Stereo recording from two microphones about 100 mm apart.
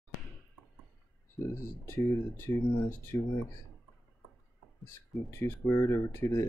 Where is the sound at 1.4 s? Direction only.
25° left (ahead or behind).